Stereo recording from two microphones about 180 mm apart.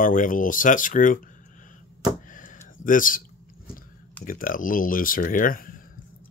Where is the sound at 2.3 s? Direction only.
45° left (ahead or behind).